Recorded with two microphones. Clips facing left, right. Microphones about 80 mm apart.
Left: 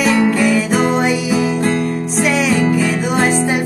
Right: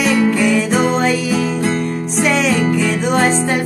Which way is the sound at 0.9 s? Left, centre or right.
Centre.